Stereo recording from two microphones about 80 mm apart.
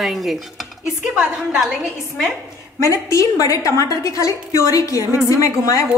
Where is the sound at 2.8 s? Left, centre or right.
Left.